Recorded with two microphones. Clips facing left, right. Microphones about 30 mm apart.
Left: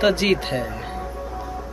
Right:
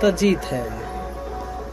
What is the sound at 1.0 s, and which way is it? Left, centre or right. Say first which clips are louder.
Music: even; centre.